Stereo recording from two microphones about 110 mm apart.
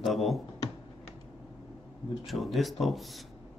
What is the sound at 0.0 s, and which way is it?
Speech, centre (ahead or behind).